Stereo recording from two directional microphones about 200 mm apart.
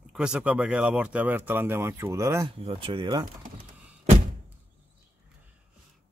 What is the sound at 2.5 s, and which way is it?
Speech, 25° right (ahead or behind).